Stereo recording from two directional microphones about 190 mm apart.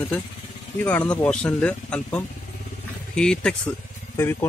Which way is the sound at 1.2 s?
5° left (ahead or behind).